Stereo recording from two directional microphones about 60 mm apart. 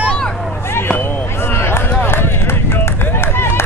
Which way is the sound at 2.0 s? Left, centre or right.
Left.